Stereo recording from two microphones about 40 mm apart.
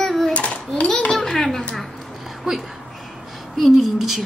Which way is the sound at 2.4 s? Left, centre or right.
Centre.